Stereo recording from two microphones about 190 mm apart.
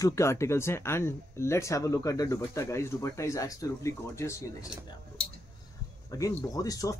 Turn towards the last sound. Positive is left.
turn(degrees=20)  # may be behind; listen again after turning